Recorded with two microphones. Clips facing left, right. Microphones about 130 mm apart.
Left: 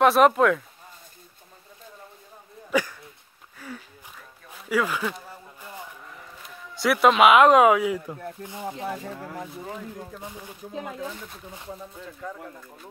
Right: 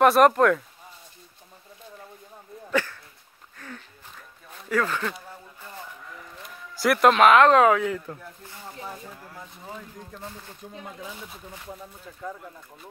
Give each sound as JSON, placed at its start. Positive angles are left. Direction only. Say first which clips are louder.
{"t": 0.0, "sound": "speech", "louder": "right 1 dB", "side_deg": 0}
{"t": 2.7, "sound": "speech", "louder": "left 1 dB", "side_deg": 15}
{"t": 3.5, "sound": "a sound", "louder": "left 3 dB", "side_deg": 10}
{"t": 4.5, "sound": "speech", "louder": "left 1 dB", "side_deg": 10}
{"t": 6.8, "sound": "speech", "louder": "even", "side_deg": 0}
{"t": 8.6, "sound": "speech", "louder": "left 7 dB", "side_deg": 80}
{"t": 9.7, "sound": "speech", "louder": "left 4 dB", "side_deg": 10}
{"t": 10.7, "sound": "speech", "louder": "left 8 dB", "side_deg": 90}
{"t": 11.0, "sound": "speech", "louder": "left 4 dB", "side_deg": -5}